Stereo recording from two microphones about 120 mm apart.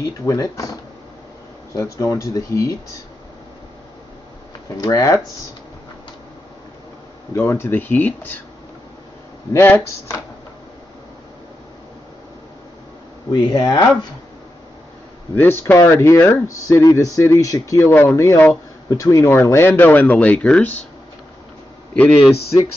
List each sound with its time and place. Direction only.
0.0 s speech: 30° left (ahead or behind)
1.8 s speech: 25° left (ahead or behind)
4.7 s speech: 30° left (ahead or behind)
7.3 s speech: 20° left (ahead or behind)
9.5 s speech: 20° left (ahead or behind)
13.5 s speech: 45° left (ahead or behind)
15.3 s speech: 20° left (ahead or behind)
21.9 s speech: 10° left (ahead or behind)